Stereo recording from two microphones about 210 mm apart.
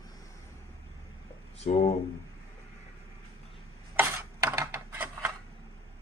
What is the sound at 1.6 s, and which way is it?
Speech, 35° left (ahead or behind).